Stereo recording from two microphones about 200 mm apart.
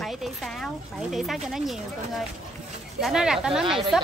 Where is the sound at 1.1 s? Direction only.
Centre (ahead or behind).